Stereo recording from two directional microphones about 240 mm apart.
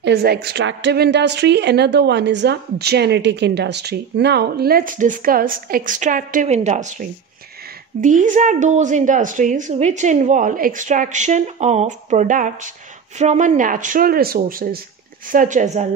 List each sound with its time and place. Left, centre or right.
0.0 s a woman's voice: right